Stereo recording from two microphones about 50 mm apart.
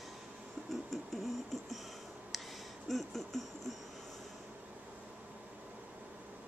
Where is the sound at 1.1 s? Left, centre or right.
Centre.